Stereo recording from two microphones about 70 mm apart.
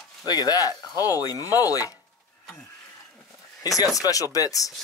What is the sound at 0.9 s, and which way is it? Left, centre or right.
Speech, right.